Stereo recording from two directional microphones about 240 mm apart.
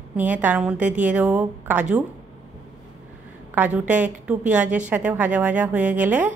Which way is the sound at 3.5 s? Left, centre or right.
Centre.